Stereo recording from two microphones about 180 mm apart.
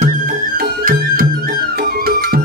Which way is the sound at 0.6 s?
50° right (ahead or behind).